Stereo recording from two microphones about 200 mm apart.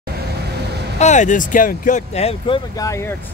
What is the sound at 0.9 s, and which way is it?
Speech, 35° left (ahead or behind).